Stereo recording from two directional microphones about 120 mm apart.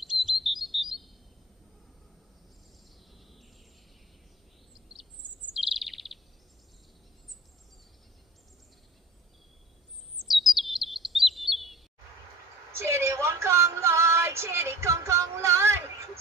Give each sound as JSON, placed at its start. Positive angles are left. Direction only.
{"t": 0.0, "sound": "chirp", "side_deg": 0}
{"t": 5.6, "sound": "bird", "side_deg": 0}
{"t": 10.1, "sound": "chirp", "side_deg": 0}
{"t": 12.7, "sound": "a sound", "side_deg": -20}